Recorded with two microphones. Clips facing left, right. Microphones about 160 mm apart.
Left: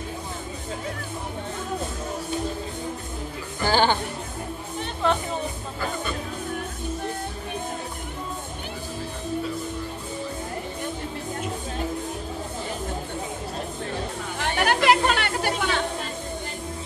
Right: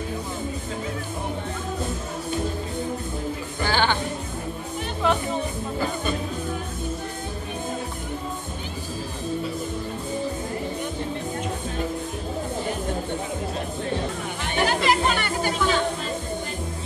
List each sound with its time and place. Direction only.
3.6 s music: 40° left (ahead or behind)
14.6 s music: 60° left (ahead or behind)